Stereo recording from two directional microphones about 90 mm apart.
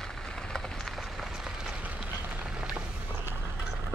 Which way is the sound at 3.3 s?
25° right (ahead or behind).